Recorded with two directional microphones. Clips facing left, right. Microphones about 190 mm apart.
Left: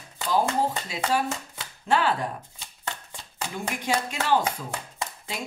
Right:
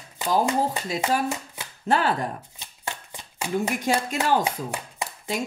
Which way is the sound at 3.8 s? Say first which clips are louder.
Right 3 dB; 45° right (ahead or behind).